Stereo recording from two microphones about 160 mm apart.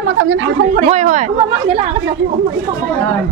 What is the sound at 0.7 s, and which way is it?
Speech, 50° right (ahead or behind).